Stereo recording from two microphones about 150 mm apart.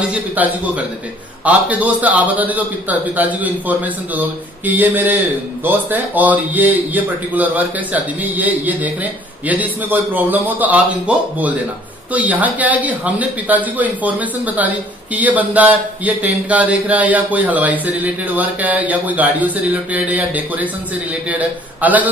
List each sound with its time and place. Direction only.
0.1 s a man's voice: 10° right (ahead or behind)